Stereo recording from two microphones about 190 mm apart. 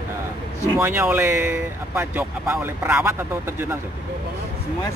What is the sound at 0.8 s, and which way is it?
Speech, 10° right (ahead or behind).